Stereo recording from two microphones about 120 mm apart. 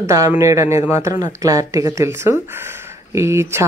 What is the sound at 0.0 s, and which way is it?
Speech, 25° right (ahead or behind).